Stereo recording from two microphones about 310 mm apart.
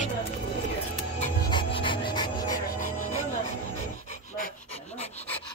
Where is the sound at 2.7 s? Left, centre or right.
Left.